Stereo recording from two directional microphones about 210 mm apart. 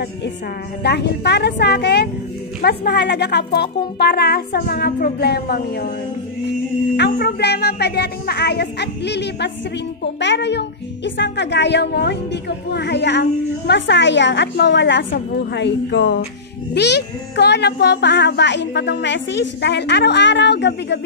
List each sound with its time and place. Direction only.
0.8 s a woman's voice: 50° left (ahead or behind)
7.0 s a woman's voice: 50° left (ahead or behind)